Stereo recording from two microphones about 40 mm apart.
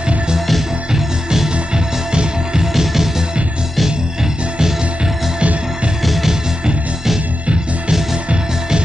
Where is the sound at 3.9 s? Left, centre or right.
Right.